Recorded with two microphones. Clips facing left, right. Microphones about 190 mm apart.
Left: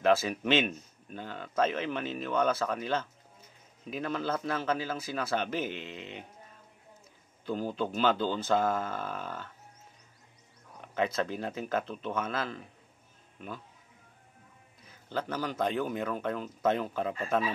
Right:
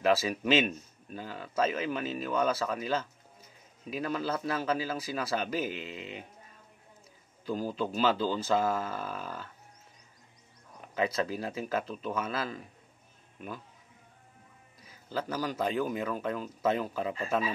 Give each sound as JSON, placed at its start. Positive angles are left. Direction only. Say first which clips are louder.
{"t": 0.0, "sound": "a man's voice", "louder": "left 1 dB", "side_deg": -5}
{"t": 7.4, "sound": "a man's voice", "louder": "even", "side_deg": -5}
{"t": 11.0, "sound": "a man's voice", "louder": "even", "side_deg": -5}
{"t": 14.9, "sound": "a man's voice", "louder": "even", "side_deg": -5}